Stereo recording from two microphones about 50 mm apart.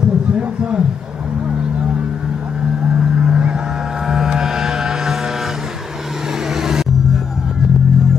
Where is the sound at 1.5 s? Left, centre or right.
Centre.